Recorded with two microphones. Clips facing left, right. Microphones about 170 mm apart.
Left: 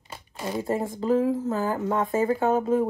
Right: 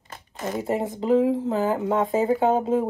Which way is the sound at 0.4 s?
20° right (ahead or behind).